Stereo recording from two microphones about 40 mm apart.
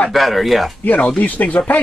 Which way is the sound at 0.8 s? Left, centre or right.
Left.